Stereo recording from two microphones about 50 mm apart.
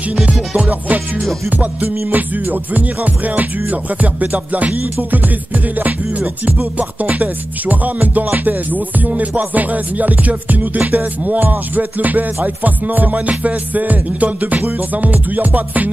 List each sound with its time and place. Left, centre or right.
0.1 s music: right